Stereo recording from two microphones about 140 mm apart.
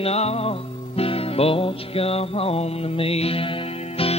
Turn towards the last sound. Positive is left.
turn(degrees=40)  # may be behind; listen again after turning